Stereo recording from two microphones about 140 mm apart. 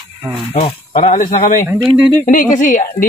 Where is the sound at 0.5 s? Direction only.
45° left (ahead or behind).